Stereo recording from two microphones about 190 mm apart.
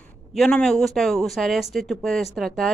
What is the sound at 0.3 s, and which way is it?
Speech, 5° left (ahead or behind).